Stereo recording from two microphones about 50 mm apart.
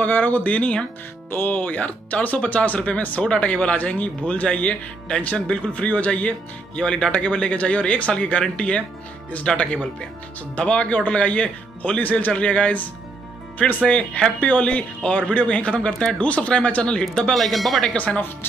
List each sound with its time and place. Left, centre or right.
0.0 s speech: left
1.3 s speech: left
6.8 s speech: centre
10.6 s speech: left
12.0 s speech: left
12.3 s speech: left
13.8 s speech: left
17.3 s speech: centre
17.9 s speech: left